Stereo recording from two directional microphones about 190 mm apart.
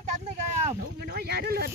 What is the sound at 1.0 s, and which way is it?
Speech, 55° right (ahead or behind).